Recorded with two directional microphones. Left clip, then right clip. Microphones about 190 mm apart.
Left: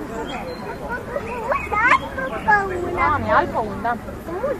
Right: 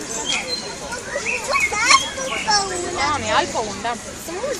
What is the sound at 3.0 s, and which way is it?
Speech, 45° right (ahead or behind).